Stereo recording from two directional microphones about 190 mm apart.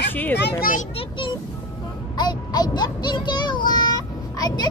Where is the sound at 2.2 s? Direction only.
20° left (ahead or behind).